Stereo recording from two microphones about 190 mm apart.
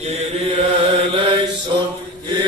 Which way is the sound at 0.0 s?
30° right (ahead or behind).